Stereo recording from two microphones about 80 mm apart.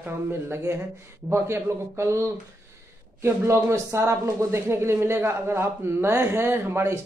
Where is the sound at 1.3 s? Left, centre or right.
Right.